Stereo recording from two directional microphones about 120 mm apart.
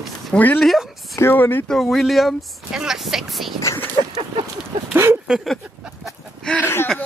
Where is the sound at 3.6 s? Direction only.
25° left (ahead or behind).